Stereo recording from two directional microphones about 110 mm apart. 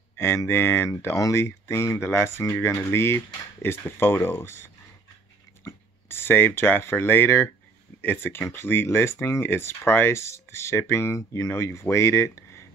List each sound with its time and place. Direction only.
0.2 s speech: 20° left (ahead or behind)